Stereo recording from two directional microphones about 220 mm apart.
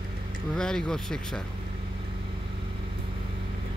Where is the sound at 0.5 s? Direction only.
5° left (ahead or behind).